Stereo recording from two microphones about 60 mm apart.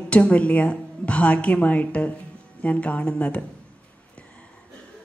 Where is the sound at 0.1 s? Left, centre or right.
Left.